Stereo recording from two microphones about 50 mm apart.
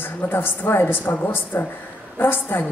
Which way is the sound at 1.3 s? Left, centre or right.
Left.